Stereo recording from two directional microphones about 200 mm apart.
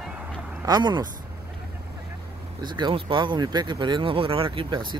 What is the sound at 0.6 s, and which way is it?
Speech, 20° right (ahead or behind).